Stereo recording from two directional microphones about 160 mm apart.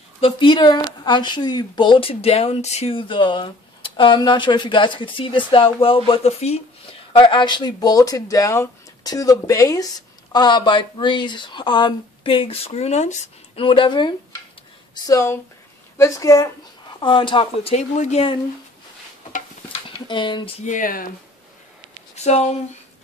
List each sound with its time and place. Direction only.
0.2 s speech: 30° left (ahead or behind)
13.7 s speech: 30° left (ahead or behind)
15.0 s a woman's voice: 20° left (ahead or behind)
17.0 s speech: 30° left (ahead or behind)
17.7 s speech: 45° left (ahead or behind)
19.9 s speech: 30° left (ahead or behind)
20.6 s speech: 55° left (ahead or behind)
22.1 s speech: 45° left (ahead or behind)